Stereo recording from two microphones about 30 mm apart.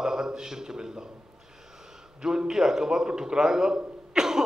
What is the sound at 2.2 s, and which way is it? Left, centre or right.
A man's voice, right.